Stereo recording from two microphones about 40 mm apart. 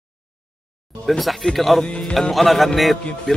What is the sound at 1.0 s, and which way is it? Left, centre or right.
Speech, centre.